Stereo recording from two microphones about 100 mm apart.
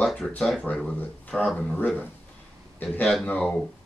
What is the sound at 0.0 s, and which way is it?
Speech, 5° left (ahead or behind).